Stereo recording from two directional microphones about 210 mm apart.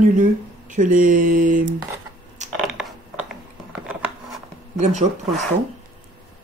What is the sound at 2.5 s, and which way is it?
Mechanisms, centre (ahead or behind).